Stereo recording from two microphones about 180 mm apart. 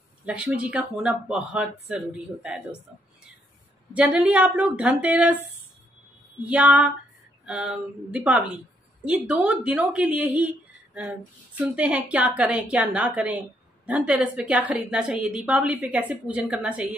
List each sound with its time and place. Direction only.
0.2 s speech: 5° right (ahead or behind)
3.9 s a woman's voice: 5° right (ahead or behind)
6.4 s a woman's voice: 5° right (ahead or behind)